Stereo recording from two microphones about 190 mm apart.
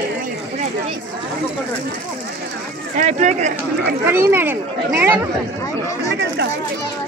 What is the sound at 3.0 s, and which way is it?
Speech, 40° right (ahead or behind).